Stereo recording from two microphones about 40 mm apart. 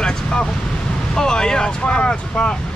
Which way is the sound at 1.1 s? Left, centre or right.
Centre.